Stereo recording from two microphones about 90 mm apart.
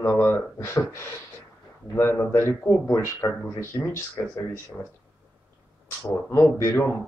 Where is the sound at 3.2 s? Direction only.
45° left (ahead or behind).